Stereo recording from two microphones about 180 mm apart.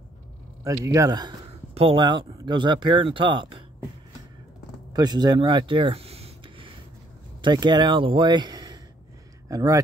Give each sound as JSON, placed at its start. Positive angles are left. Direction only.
{"t": 0.7, "sound": "speech", "side_deg": -15}
{"t": 4.9, "sound": "speech", "side_deg": -20}